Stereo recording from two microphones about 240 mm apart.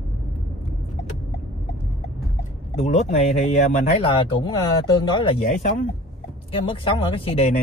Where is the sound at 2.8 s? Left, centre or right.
Left.